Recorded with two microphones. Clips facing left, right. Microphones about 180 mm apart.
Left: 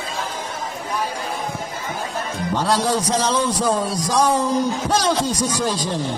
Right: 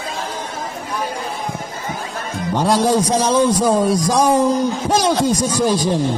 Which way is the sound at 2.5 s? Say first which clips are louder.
Right 5 dB; 15° right (ahead or behind).